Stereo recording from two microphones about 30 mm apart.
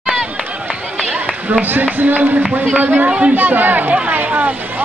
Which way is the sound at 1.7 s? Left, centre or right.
Right.